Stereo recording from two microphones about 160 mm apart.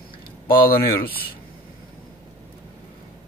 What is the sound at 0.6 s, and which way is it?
Speech, 70° left (ahead or behind).